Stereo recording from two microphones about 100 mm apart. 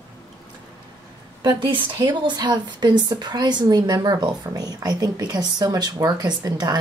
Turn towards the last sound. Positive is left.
turn(degrees=-40)  # may be behind; listen again after turning